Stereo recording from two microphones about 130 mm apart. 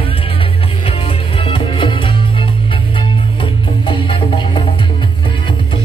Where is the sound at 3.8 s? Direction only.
40° left (ahead or behind).